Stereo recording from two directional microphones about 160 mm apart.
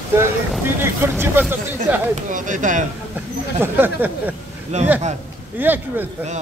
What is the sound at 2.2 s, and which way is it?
Speech, 55° right (ahead or behind).